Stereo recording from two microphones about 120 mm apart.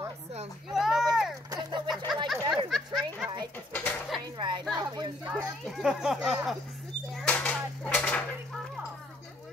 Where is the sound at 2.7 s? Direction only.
Centre (ahead or behind).